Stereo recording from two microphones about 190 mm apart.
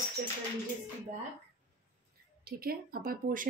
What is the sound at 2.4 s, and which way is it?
Speech, 50° right (ahead or behind).